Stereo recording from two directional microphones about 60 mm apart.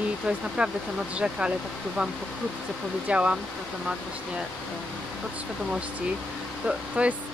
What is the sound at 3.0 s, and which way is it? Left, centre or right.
Speech, right.